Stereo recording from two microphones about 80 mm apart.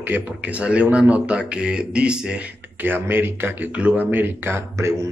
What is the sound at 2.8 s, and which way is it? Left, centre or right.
Speech, right.